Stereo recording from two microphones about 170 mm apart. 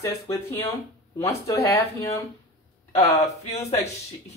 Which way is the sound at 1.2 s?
15° left (ahead or behind).